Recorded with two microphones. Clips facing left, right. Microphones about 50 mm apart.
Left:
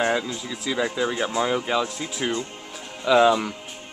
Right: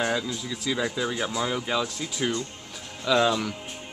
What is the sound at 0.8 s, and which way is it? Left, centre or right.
Speech, left.